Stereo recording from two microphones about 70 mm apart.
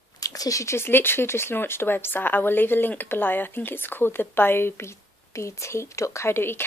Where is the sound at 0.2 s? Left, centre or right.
Left.